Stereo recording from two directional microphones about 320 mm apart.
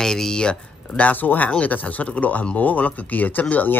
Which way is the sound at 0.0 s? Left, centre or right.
Centre.